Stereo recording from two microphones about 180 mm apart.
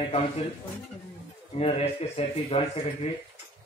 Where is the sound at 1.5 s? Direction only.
35° left (ahead or behind).